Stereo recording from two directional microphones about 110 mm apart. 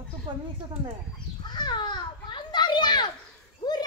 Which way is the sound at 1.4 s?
40° left (ahead or behind).